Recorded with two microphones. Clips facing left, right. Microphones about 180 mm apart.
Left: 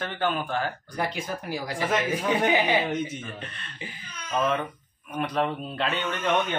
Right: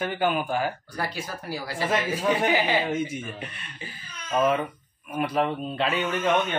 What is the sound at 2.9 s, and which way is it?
Speech, 10° right (ahead or behind).